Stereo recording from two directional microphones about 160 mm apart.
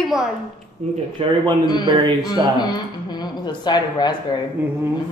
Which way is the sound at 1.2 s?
35° right (ahead or behind).